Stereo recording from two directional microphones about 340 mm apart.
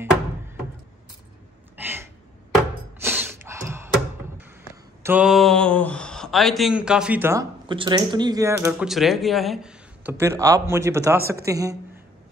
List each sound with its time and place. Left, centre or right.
1.8 s a sound: centre
5.0 s speech: centre
11.1 s a man's voice: right
11.4 s speech: centre